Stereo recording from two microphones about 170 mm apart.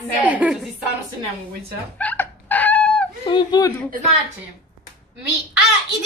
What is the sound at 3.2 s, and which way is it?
Speech, 25° left (ahead or behind).